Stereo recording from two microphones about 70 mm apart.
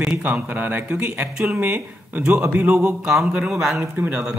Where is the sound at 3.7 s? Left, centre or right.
Right.